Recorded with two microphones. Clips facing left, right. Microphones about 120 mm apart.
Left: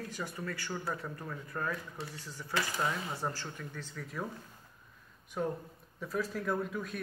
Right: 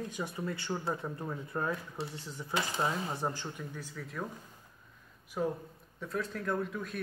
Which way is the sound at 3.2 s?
15° right (ahead or behind).